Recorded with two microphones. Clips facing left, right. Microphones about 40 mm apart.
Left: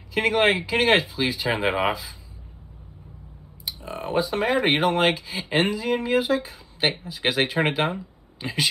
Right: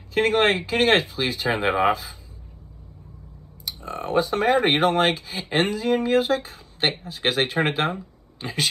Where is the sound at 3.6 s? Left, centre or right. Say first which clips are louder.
Right 1 dB; left.